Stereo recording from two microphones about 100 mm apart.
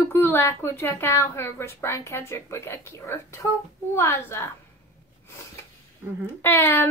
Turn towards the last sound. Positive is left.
turn(degrees=25)  # may be behind; listen again after turning